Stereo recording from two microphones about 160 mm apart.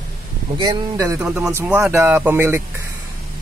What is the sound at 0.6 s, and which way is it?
Speech, 25° right (ahead or behind).